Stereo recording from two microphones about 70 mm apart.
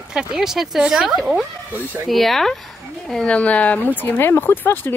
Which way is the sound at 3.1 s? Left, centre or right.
Centre.